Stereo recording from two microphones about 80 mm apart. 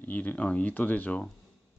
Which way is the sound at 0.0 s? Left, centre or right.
Left.